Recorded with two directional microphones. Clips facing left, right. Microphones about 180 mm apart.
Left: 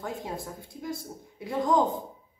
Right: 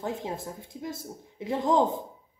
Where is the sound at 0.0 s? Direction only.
20° right (ahead or behind).